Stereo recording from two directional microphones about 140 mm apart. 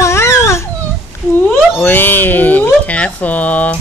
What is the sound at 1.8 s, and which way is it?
Speech, 15° left (ahead or behind).